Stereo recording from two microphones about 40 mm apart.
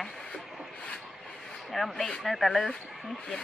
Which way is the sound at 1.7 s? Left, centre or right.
Centre.